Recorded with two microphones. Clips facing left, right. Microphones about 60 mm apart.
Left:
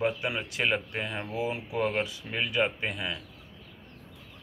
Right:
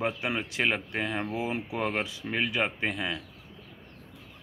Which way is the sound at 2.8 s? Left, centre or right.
Right.